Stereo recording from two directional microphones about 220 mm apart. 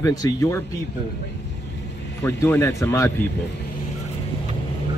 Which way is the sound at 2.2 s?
10° left (ahead or behind).